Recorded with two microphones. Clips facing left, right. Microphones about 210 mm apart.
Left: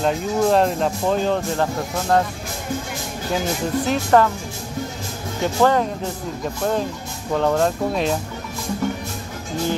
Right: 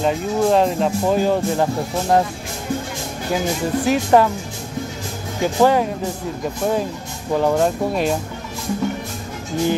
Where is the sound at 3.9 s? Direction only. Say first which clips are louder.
Right 2 dB; 15° right (ahead or behind).